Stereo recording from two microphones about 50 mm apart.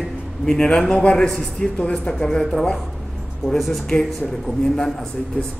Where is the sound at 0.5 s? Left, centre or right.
Centre.